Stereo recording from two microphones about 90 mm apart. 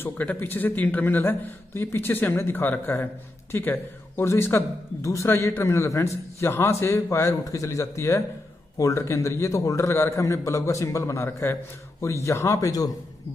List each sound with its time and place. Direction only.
0.0 s a man's voice: 20° left (ahead or behind); by 12.9 s 40° left (ahead or behind)